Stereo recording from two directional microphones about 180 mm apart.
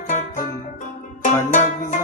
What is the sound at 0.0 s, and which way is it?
Music, 45° left (ahead or behind).